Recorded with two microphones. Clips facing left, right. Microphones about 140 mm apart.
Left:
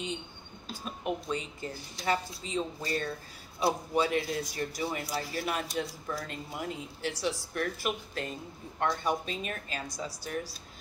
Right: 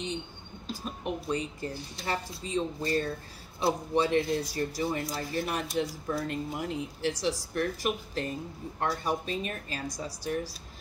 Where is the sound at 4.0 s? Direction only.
30° right (ahead or behind).